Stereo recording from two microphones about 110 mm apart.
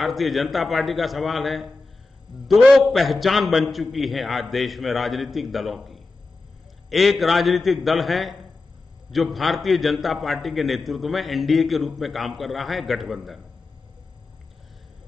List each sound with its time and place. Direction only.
0.0 s a man's voice: centre (ahead or behind)